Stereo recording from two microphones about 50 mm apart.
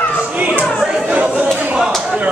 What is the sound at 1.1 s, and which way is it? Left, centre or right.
Chatter, right.